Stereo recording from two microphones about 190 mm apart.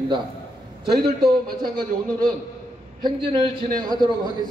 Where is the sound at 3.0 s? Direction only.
25° right (ahead or behind).